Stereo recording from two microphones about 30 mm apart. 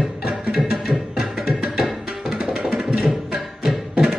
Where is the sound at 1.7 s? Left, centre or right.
Centre.